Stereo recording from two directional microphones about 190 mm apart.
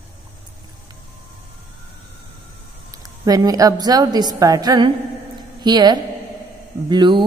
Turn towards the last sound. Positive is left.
turn(degrees=-25)  # may be behind; listen again after turning